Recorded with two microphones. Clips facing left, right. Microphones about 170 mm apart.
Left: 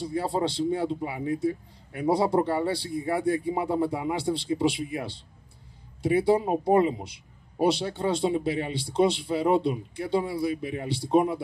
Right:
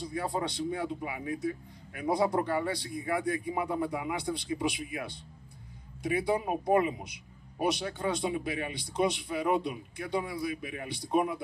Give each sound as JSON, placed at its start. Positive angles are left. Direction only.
{"t": 0.0, "sound": "a man's voice", "side_deg": 30}